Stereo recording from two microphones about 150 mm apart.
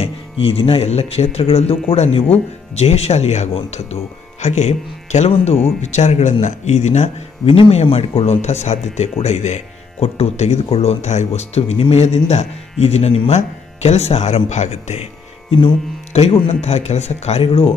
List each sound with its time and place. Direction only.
0.0 s speech: 40° left (ahead or behind)
7.5 s speech: 40° left (ahead or behind)